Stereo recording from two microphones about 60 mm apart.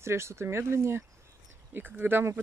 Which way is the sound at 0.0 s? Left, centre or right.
Right.